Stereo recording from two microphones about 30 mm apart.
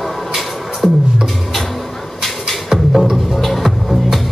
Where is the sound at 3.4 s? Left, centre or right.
Centre.